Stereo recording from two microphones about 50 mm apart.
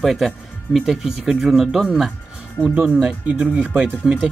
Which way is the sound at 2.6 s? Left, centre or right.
Right.